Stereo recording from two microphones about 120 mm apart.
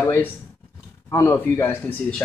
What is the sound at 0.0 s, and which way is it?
Speech, 20° left (ahead or behind).